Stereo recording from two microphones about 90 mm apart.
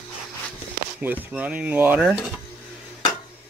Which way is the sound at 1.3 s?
15° right (ahead or behind).